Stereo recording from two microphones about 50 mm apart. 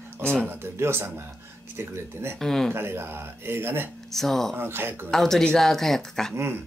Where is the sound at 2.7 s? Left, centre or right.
Right.